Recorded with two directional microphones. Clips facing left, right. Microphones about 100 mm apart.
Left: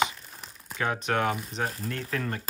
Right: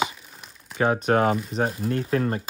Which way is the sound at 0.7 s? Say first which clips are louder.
Right 7 dB; 40° right (ahead or behind).